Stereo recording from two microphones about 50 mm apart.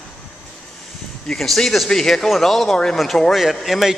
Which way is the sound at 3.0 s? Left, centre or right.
Centre.